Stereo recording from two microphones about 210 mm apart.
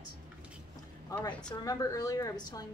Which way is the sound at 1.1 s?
5° left (ahead or behind).